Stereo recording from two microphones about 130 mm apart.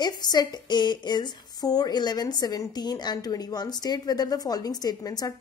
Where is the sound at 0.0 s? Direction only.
30° left (ahead or behind).